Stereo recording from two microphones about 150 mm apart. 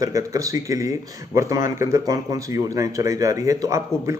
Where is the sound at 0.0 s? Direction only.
20° right (ahead or behind).